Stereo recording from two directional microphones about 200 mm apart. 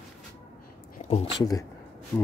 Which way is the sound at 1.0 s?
30° left (ahead or behind).